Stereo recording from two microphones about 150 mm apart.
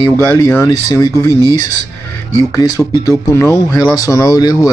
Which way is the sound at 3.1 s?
20° left (ahead or behind).